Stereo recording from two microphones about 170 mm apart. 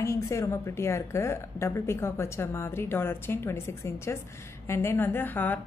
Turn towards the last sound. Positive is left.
turn(degrees=10)  # may be behind; listen again after turning